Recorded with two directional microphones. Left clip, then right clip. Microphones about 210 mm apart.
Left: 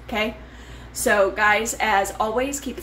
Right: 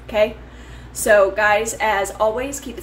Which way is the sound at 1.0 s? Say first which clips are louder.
Right 4 dB; 10° left (ahead or behind).